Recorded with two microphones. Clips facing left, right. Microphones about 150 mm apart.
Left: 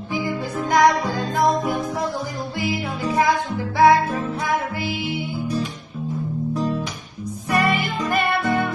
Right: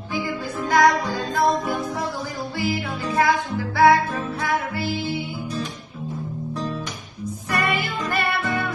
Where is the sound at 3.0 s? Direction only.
20° left (ahead or behind).